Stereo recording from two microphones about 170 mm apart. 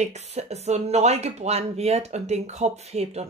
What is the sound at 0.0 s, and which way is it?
Speech, 40° right (ahead or behind).